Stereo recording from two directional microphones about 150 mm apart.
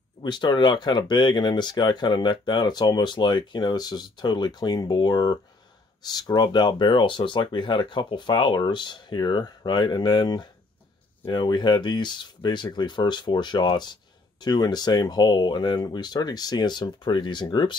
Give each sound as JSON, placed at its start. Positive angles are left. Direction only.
{"t": 0.2, "sound": "speech", "side_deg": 30}